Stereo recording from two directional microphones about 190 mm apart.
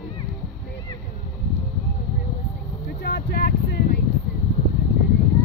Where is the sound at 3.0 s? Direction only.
60° left (ahead or behind).